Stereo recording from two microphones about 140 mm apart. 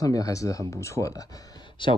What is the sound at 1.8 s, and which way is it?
Speech, 35° left (ahead or behind).